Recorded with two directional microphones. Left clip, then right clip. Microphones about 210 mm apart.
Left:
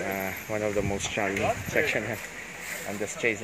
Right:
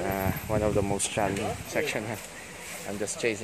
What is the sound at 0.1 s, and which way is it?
Vehicle, 10° right (ahead or behind).